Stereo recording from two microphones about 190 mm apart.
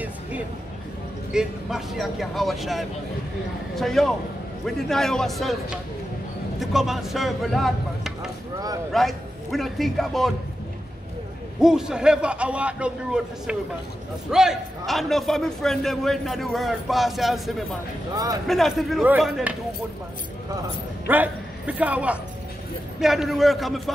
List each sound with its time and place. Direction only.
1.3 s a man's voice: 5° right (ahead or behind)
6.6 s a man's voice: centre (ahead or behind)
11.6 s a man's voice: 5° right (ahead or behind)
18.1 s speech: 20° right (ahead or behind)
18.5 s a man's voice: centre (ahead or behind)
21.1 s a man's voice: 10° right (ahead or behind)